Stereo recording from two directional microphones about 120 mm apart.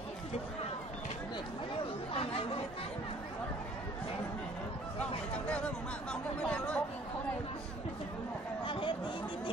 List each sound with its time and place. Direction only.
2.1 s chatter: 50° left (ahead or behind)
5.3 s chatter: 10° left (ahead or behind)
8.6 s chatter: 45° left (ahead or behind)